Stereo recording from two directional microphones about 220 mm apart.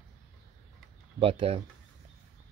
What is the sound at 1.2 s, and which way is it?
Speech, 25° right (ahead or behind).